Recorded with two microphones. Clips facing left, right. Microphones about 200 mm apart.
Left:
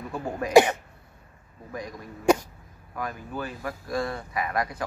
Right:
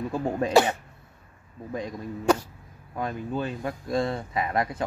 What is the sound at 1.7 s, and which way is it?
Speech, 25° right (ahead or behind).